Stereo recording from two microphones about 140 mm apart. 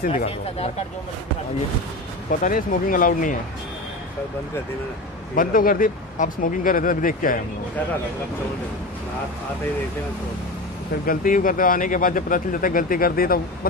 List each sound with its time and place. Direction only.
0.1 s speech: 45° left (ahead or behind)
2.4 s speech: 70° left (ahead or behind)
5.3 s speech: 85° left
11.1 s speech: 80° left